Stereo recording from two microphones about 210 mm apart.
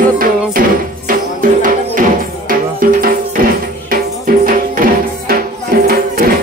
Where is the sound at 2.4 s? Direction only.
40° right (ahead or behind).